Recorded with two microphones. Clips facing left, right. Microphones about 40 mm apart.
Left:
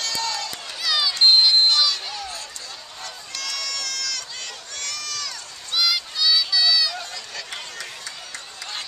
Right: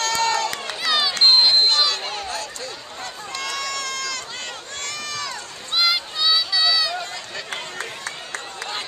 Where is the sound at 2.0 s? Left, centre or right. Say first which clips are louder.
Right 3 dB; right.